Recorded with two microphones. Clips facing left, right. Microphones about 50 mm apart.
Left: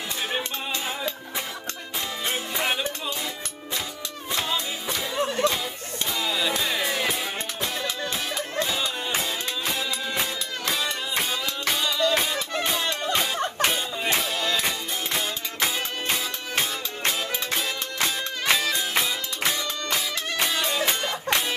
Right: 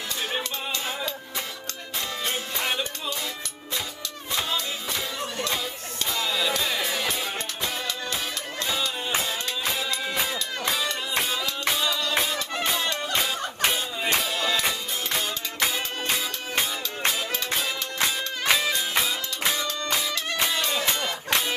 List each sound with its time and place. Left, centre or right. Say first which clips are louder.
2.2 s music: left 3 dB; centre
4.5 s music: left 1 dB; centre
5.1 s music: left 7 dB; left
5.5 s music: left 1 dB; centre
9.2 s music: even; centre
11.1 s music: right 1 dB; centre
13.6 s a sound: left 1 dB; centre
14.1 s music: right 1 dB; centre
18.0 s music: even; centre